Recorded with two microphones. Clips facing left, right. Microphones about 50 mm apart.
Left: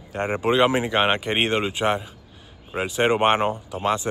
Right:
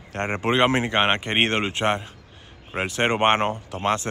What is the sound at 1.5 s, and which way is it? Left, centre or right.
Speech, right.